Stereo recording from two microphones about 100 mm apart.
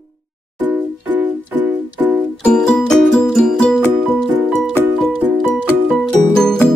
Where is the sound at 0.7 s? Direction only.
15° right (ahead or behind).